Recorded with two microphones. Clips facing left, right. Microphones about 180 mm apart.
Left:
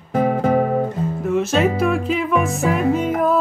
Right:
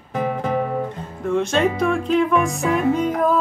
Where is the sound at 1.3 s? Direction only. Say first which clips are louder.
Even; 5° left (ahead or behind).